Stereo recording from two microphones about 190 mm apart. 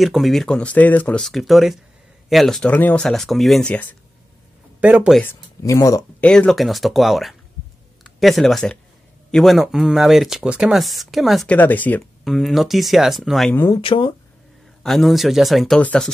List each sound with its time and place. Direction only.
0.0 s speech: centre (ahead or behind)
4.7 s speech: 10° right (ahead or behind)
5.2 s speech: 15° left (ahead or behind)
6.2 s speech: 5° left (ahead or behind)
13.7 s speech: 25° left (ahead or behind)
14.8 s speech: centre (ahead or behind)